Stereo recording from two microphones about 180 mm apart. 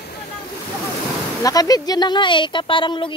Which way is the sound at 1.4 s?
20° left (ahead or behind).